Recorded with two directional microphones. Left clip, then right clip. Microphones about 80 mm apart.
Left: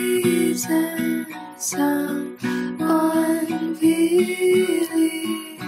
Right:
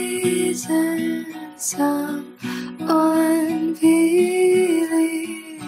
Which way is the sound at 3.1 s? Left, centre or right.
Right.